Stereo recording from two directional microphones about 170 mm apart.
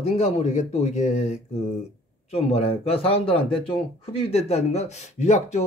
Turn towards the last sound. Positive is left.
turn(degrees=40)  # may be behind; listen again after turning